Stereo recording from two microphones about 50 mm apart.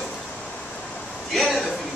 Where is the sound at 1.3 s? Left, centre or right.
Centre.